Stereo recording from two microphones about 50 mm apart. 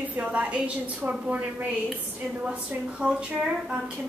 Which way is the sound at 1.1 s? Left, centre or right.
Right.